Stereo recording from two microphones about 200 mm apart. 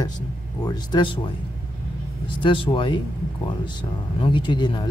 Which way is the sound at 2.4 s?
25° left (ahead or behind).